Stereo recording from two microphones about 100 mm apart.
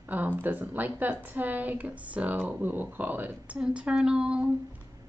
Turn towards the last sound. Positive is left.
turn(degrees=-10)  # may be behind; listen again after turning